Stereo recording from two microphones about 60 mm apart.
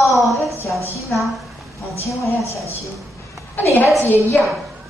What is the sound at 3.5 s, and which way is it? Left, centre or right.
Speech, left.